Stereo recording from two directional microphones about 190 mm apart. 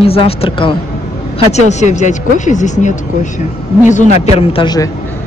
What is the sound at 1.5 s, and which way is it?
Speech, 35° left (ahead or behind).